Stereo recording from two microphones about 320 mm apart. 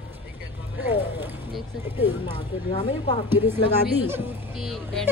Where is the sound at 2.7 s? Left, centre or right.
Centre.